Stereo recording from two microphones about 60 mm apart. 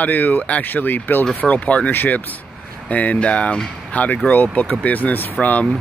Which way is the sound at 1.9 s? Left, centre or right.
Left.